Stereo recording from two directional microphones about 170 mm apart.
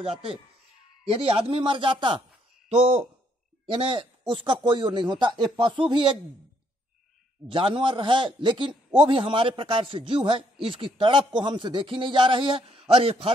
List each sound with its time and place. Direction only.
0.0 s a man's voice: 35° right (ahead or behind)
3.6 s a man's voice: 30° right (ahead or behind)
7.4 s a man's voice: 30° right (ahead or behind)